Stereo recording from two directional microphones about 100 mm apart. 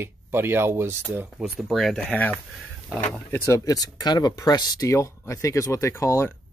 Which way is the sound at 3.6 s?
40° left (ahead or behind).